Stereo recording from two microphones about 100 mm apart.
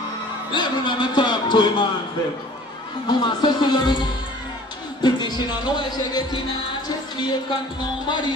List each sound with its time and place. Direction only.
0.5 s a man's voice: 50° left (ahead or behind)
3.1 s speech: 50° left (ahead or behind)